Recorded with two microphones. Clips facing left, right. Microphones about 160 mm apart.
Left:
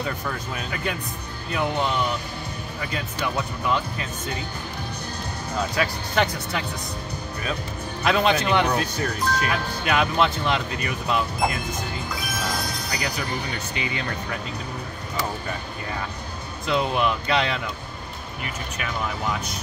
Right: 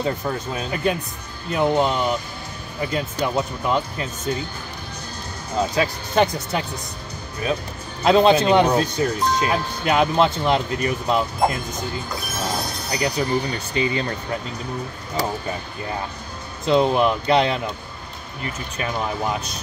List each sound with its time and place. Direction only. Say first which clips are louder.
0.0 s speech: right 5 dB; 30° right (ahead or behind)
5.6 s speech: right 4 dB; 25° right (ahead or behind)
8.0 s speech: right 6 dB; 30° right (ahead or behind)
16.6 s speech: right 6 dB; 25° right (ahead or behind)